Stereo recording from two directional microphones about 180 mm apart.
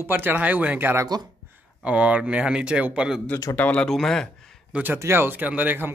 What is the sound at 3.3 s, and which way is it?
Speech, 20° left (ahead or behind).